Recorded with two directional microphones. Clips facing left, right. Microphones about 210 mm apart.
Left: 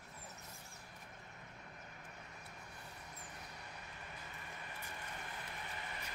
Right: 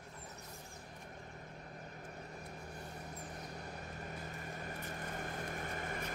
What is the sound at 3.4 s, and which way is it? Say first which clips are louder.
Vehicle: right 7 dB; 45° right (ahead or behind).